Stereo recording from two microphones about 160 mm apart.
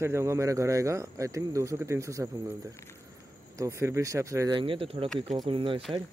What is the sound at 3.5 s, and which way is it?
Speech, 20° right (ahead or behind).